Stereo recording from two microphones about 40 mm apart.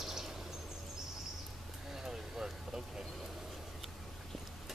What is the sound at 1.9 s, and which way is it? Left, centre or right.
Vehicle, centre.